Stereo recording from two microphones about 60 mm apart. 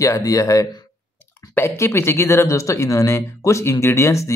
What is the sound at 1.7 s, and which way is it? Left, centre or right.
Speech, left.